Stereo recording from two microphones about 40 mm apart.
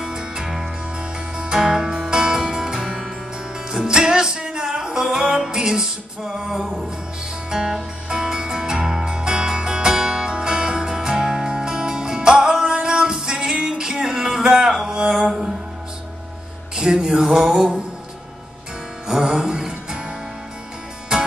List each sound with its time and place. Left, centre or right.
0.0 s music: centre
16.7 s music: centre
19.0 s music: centre